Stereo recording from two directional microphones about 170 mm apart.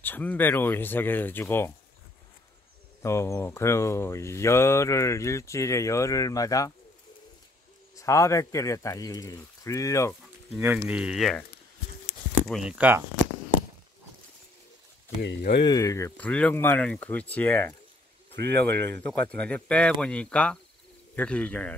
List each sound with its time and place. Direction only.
0.0 s speech: 10° left (ahead or behind)
3.0 s speech: 15° left (ahead or behind)
7.9 s speech: 20° left (ahead or behind)
10.5 s speech: 5° right (ahead or behind)
12.4 s speech: 5° right (ahead or behind)
15.2 s speech: 75° left (ahead or behind)
15.6 s speech: 20° left (ahead or behind)